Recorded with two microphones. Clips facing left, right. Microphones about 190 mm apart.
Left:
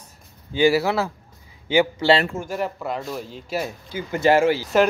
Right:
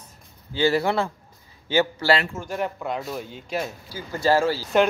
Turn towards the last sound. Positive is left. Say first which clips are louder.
# left 3 dB
turn(degrees=20)  # may be behind; listen again after turning